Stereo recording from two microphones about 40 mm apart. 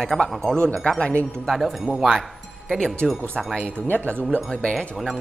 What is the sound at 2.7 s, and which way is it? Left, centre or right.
Speech, centre.